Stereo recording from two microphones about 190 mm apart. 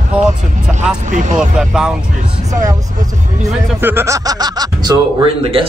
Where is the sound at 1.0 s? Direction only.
40° right (ahead or behind).